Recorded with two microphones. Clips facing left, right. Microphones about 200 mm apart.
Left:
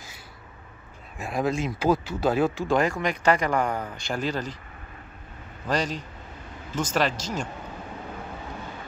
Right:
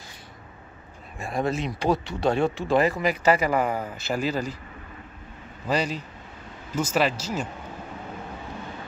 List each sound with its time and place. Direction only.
1.1 s speech: centre (ahead or behind)
5.7 s speech: 5° right (ahead or behind)